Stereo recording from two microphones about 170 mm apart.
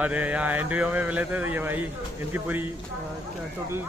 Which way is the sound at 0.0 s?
10° right (ahead or behind).